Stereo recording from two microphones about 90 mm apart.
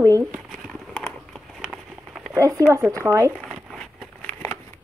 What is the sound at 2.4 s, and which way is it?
Speech, 40° right (ahead or behind).